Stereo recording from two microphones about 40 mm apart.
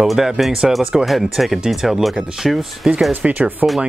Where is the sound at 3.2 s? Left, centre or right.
Right.